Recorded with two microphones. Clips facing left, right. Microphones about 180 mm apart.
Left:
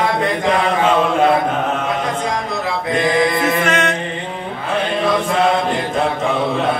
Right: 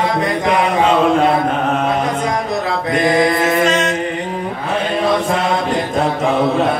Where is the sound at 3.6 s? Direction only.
60° left (ahead or behind).